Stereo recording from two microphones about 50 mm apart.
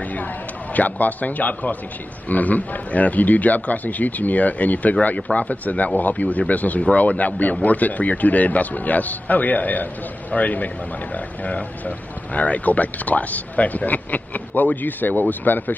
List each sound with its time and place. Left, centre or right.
0.7 s speech: left